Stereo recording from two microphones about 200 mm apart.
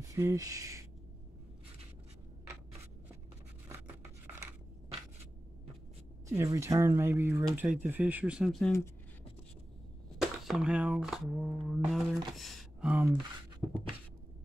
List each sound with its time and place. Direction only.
0.1 s speech: 15° right (ahead or behind)
6.2 s speech: 15° right (ahead or behind); by 8.7 s centre (ahead or behind)
10.2 s speech: centre (ahead or behind)